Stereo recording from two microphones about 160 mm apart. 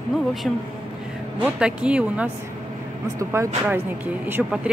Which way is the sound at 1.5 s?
5° right (ahead or behind).